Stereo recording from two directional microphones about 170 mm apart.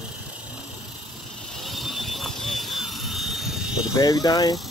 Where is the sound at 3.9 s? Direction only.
20° left (ahead or behind).